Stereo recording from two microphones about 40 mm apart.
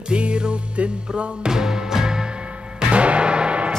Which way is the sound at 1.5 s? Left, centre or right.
Centre.